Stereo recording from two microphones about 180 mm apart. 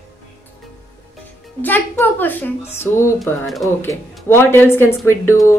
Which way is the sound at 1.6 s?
10° left (ahead or behind).